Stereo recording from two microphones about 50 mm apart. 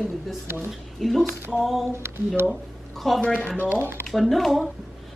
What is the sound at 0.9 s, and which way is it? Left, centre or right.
Speech, centre.